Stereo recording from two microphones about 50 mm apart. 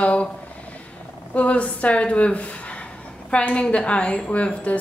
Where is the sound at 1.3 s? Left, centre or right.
Left.